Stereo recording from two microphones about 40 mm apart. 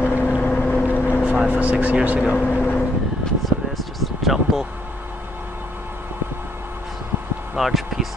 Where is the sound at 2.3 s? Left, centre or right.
Left.